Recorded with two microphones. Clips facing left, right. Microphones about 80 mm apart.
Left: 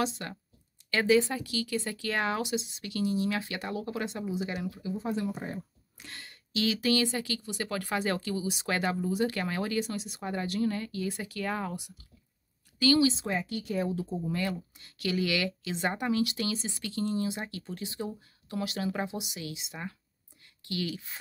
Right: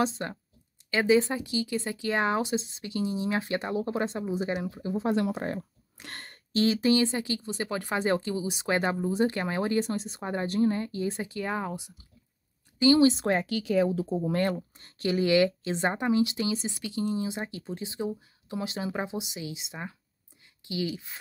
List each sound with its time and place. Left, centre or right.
0.0 s speech: right
2.2 s speech: right
4.9 s speech: right
6.0 s speech: right
13.0 s speech: right
14.3 s speech: right
15.0 s speech: right
16.0 s speech: right
20.8 s speech: centre